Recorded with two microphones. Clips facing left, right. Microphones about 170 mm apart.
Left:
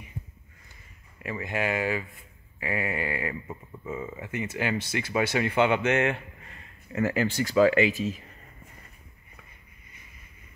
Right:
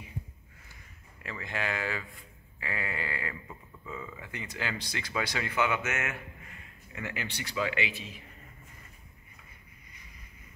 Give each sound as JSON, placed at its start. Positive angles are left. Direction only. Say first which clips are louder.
{"t": 1.2, "sound": "a man's voice", "louder": "left 6 dB", "side_deg": 15}